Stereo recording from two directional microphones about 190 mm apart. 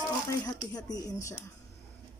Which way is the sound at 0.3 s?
20° left (ahead or behind).